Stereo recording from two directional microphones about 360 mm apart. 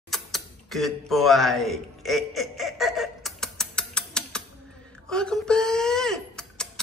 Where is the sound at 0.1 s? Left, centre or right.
Centre.